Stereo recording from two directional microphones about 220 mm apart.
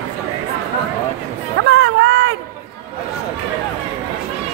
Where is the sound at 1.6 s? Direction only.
60° right (ahead or behind).